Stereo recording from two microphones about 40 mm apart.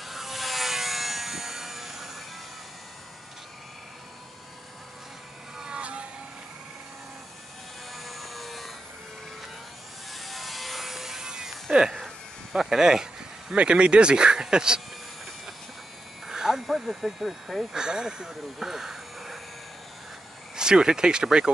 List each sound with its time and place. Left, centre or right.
0.0 s wood: centre
5.6 s vehicle: right
7.9 s wood: centre
10.1 s sawing: centre
11.7 s insect: centre
12.5 s a sound: centre
13.6 s speech: right
16.3 s a sound: centre
16.6 s speech: centre
17.7 s speech: centre
18.3 s speech: centre
20.5 s speech: centre